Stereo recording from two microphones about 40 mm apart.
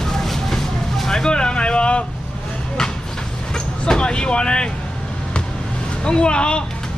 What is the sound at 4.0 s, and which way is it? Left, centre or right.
Vehicle, left.